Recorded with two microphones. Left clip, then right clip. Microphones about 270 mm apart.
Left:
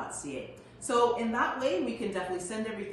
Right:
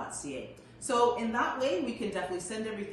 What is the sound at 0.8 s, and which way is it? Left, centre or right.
A woman's voice, centre.